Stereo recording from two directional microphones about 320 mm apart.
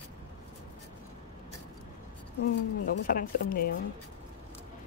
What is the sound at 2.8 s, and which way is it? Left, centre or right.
Speech, left.